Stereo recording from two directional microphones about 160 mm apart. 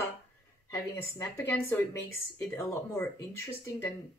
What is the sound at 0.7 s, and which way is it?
Speech, 15° left (ahead or behind).